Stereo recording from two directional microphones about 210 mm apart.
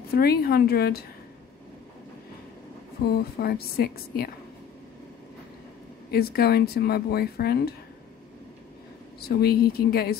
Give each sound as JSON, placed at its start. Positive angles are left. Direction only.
{"t": 0.1, "sound": "speech", "side_deg": 45}
{"t": 3.2, "sound": "speech", "side_deg": 45}
{"t": 6.0, "sound": "speech", "side_deg": 50}
{"t": 9.2, "sound": "speech", "side_deg": 50}